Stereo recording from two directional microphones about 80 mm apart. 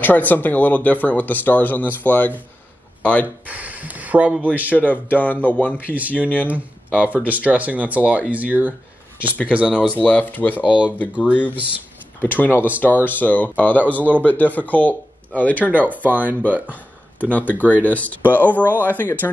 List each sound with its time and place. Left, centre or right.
0.0 s speech: left
3.4 s speech: centre
4.7 s speech: left
5.9 s speech: centre
6.5 s speech: left
7.1 s speech: centre
10.0 s speech: centre
10.5 s speech: centre
12.2 s speech: left
15.9 s speech: right
16.7 s speech: centre